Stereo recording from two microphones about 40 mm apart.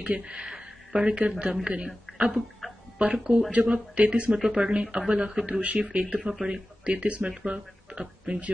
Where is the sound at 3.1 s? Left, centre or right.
Right.